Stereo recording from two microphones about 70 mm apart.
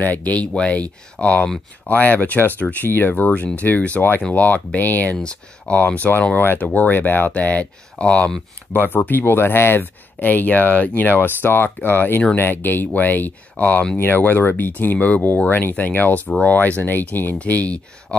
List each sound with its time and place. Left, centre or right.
0.0 s speech: left
6.3 s speech: left